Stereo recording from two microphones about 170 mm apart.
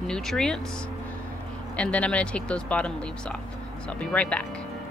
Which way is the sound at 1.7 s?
5° left (ahead or behind).